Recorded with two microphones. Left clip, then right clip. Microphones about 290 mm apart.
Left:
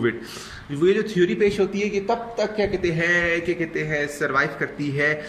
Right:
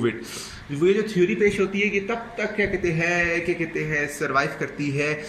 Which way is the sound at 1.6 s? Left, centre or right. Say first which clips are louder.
Even; left.